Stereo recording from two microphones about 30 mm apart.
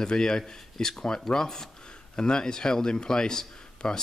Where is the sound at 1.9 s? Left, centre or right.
Left.